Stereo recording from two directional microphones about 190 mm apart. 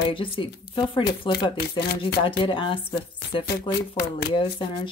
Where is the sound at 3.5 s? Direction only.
55° left (ahead or behind).